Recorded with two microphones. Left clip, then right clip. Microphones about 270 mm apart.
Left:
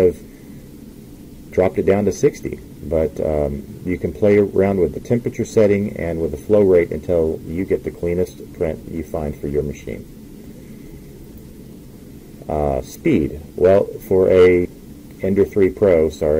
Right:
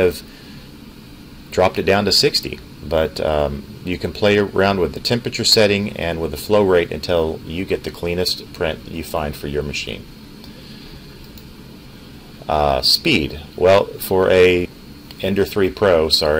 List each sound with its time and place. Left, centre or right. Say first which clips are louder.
1.5 s speech: right 1 dB; right
12.4 s speech: right 6 dB; right